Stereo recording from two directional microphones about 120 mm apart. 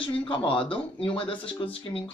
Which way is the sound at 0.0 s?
50° left (ahead or behind).